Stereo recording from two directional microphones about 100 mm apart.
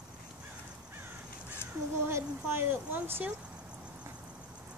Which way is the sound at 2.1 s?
25° right (ahead or behind).